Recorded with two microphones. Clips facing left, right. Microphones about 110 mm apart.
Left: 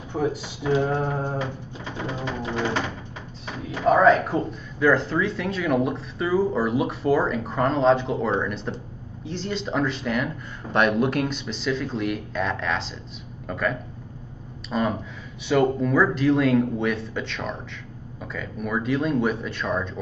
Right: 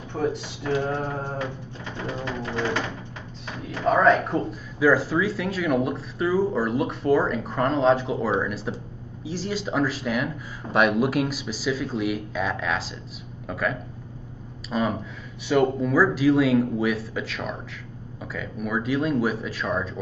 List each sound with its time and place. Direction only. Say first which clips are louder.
0.1 s speech: left 1 dB; 5° left (ahead or behind)
0.8 s mantra: left 3 dB; 10° left (ahead or behind)
2.5 s a sound: left 1 dB; 30° left (ahead or behind)
3.8 s speech: left 2 dB; centre (ahead or behind)